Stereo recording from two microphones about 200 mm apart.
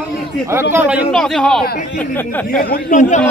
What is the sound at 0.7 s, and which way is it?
A man's voice, 5° right (ahead or behind).